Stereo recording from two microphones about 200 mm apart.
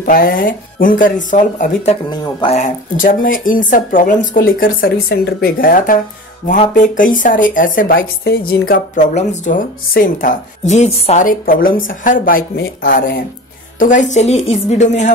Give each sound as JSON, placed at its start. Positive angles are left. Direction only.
{"t": 0.0, "sound": "a woman's voice", "side_deg": 45}